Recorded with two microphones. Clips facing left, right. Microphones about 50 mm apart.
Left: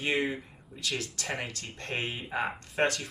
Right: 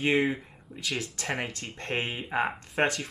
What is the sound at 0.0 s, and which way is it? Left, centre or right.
Speech, centre.